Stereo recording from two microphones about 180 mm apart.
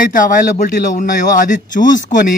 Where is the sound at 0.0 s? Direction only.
50° left (ahead or behind).